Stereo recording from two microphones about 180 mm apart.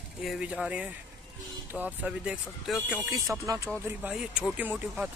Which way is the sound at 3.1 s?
15° right (ahead or behind).